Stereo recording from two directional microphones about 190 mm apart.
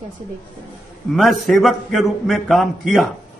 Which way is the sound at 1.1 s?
Centre (ahead or behind).